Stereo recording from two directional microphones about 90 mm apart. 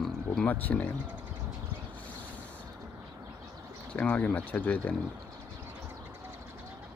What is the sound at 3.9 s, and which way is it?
Speech, 15° left (ahead or behind).